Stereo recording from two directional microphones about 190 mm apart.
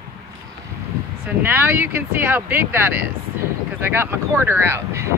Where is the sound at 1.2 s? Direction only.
10° right (ahead or behind).